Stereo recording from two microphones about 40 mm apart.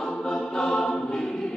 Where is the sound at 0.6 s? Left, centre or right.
Centre.